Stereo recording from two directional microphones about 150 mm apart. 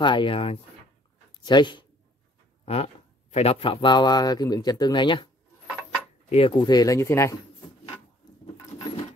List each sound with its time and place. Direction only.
0.0 s speech: 30° left (ahead or behind)
2.6 s speech: 45° left (ahead or behind)
6.3 s speech: 35° left (ahead or behind); by 7.3 s 20° left (ahead or behind)